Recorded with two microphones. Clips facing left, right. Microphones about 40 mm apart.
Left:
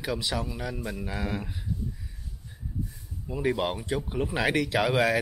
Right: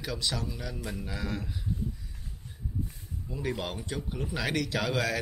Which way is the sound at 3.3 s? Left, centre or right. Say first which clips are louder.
Left 7 dB; left.